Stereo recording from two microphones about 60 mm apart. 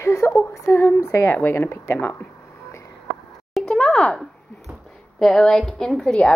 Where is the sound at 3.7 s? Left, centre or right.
Centre.